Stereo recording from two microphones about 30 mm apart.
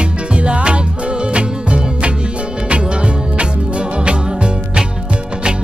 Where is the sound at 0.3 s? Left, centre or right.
Right.